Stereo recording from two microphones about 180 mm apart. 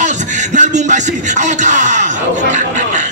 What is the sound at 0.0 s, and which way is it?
Music, 40° right (ahead or behind).